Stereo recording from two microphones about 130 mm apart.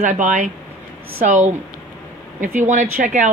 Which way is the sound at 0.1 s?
70° right (ahead or behind).